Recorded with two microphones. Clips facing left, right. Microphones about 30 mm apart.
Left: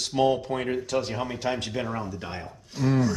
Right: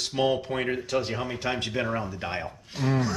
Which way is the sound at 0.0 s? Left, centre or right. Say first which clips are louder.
Left 2 dB; centre.